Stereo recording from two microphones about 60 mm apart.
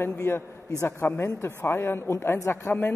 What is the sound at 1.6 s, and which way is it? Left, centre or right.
Speech, left.